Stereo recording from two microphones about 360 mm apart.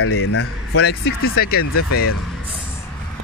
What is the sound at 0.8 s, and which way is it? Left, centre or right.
Speech, left.